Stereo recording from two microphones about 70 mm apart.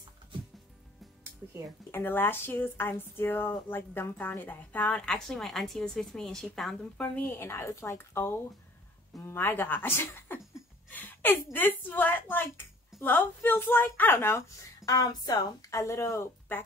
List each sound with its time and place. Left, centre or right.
1.9 s speech: left; by 6.8 s centre
7.0 s speech: left
7.3 s a woman's voice: left
10.9 s a sound: left
11.5 s a woman's voice: left
14.9 s speech: left
15.7 s speech: left